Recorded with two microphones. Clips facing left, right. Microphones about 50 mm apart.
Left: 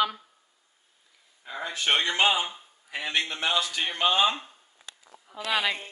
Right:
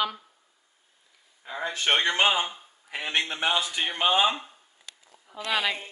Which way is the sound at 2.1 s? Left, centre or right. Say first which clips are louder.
Right 1 dB; right.